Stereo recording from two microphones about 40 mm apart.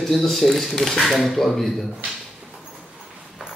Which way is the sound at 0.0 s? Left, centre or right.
Centre.